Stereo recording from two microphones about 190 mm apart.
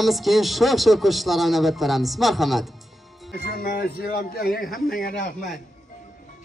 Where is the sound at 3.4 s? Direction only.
50° left (ahead or behind).